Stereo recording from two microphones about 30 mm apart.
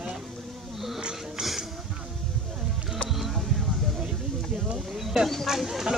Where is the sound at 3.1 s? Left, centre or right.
Centre.